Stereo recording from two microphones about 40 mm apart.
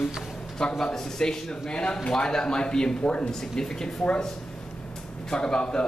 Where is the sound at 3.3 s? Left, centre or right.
Centre.